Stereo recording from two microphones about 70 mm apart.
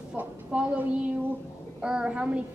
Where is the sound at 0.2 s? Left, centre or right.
Right.